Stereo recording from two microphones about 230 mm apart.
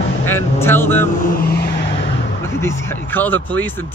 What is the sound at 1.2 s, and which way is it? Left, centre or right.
Vehicle, left.